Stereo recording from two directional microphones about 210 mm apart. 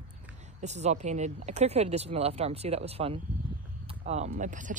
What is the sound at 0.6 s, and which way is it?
Speech, 35° right (ahead or behind).